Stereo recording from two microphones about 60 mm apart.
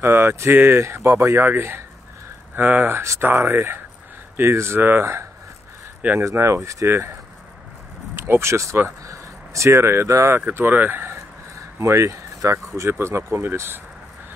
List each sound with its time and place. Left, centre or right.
0.0 s speech: right
1.3 s speech: right
6.1 s speech: right
8.2 s speech: right
10.4 s speech: right
11.8 s speech: right
12.9 s speech: right